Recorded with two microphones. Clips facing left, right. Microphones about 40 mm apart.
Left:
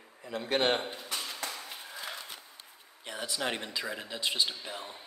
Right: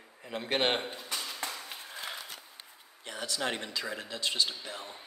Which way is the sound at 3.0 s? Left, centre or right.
Centre.